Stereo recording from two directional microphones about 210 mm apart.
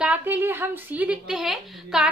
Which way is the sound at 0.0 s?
10° right (ahead or behind).